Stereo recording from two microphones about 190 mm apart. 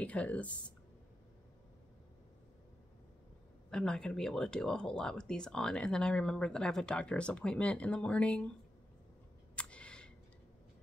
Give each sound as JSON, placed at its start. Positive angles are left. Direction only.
{"t": 0.0, "sound": "speech", "side_deg": 5}
{"t": 3.7, "sound": "speech", "side_deg": 5}
{"t": 9.6, "sound": "a sound", "side_deg": 5}